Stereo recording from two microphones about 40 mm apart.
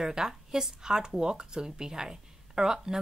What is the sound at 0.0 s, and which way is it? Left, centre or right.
Speech, centre.